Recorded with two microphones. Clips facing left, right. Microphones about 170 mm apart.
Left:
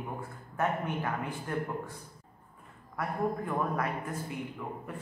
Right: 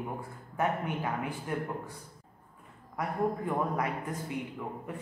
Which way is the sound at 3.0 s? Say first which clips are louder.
Right 1 dB; 20° right (ahead or behind).